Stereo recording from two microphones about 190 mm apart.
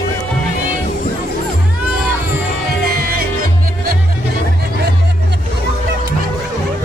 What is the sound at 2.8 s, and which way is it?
Music, 55° right (ahead or behind).